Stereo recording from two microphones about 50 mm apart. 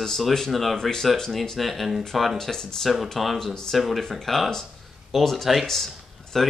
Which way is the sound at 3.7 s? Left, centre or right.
Centre.